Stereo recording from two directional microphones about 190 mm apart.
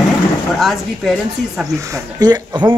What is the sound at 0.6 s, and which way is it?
Speech, centre (ahead or behind).